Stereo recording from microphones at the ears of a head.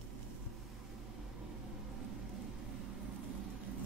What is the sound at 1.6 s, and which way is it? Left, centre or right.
Vehicle, right.